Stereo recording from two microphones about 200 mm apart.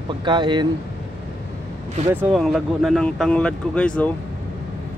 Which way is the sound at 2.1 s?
Centre (ahead or behind).